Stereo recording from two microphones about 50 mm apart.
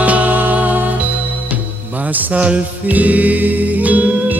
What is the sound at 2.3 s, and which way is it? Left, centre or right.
Music, right.